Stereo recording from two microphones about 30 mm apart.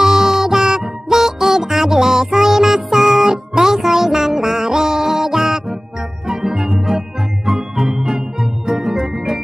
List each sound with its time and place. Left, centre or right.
0.0 s music: centre
3.3 s music: right
3.7 s music: centre
7.4 s organ: centre